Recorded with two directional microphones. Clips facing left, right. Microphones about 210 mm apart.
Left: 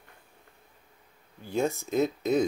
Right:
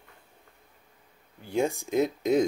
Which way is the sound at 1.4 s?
15° right (ahead or behind).